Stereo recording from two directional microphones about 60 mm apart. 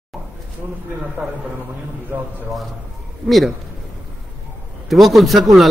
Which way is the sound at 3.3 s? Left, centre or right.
Centre.